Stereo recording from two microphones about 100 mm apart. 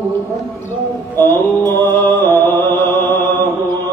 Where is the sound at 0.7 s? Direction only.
20° left (ahead or behind).